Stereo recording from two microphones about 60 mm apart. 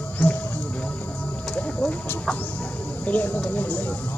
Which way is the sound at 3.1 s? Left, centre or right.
Left.